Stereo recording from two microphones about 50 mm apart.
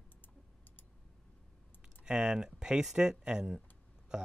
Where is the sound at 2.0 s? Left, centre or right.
Centre.